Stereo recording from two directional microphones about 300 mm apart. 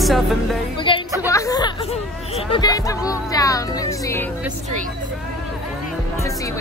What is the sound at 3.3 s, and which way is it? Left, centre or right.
Music, centre.